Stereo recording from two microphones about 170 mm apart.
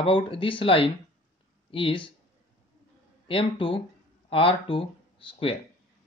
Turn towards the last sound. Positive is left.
turn(degrees=30)  # may be behind; listen again after turning